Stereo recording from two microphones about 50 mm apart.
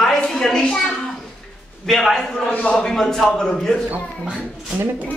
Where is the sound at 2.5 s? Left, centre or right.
Left.